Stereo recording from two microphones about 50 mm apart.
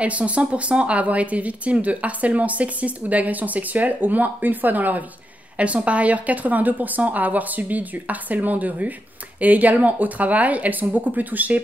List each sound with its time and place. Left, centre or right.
0.0 s speech: right